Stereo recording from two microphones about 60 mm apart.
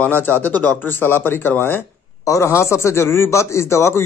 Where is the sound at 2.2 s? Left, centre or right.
Left.